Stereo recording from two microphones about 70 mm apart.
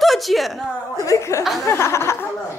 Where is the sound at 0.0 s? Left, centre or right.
Centre.